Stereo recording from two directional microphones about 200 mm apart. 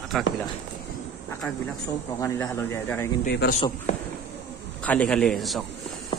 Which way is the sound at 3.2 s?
55° left (ahead or behind).